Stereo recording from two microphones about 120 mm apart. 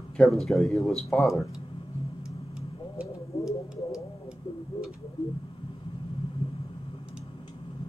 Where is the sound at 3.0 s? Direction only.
5° right (ahead or behind).